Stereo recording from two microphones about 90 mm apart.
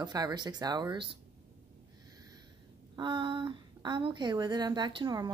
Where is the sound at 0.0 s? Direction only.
50° right (ahead or behind).